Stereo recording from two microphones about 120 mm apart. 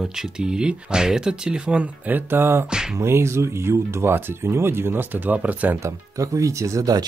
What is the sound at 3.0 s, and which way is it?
Speech, 20° right (ahead or behind).